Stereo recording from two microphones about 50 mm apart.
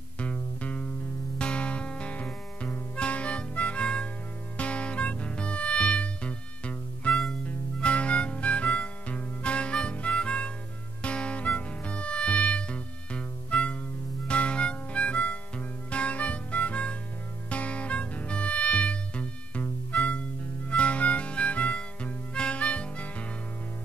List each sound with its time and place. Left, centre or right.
0.2 s music: left
7.1 s music: centre
7.4 s music: left
14.2 s harmonica: left
17.5 s music: left
20.7 s harmonica: left